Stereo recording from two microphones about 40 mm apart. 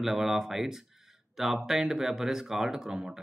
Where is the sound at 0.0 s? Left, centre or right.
Centre.